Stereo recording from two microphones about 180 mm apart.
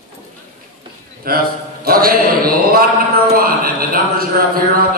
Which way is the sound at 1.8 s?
55° right (ahead or behind).